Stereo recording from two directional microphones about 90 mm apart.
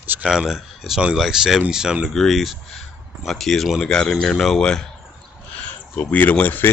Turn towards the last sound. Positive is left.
turn(degrees=20)  # may be behind; listen again after turning